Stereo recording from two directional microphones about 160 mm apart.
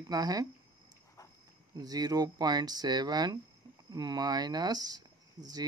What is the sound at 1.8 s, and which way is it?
Speech, 25° right (ahead or behind).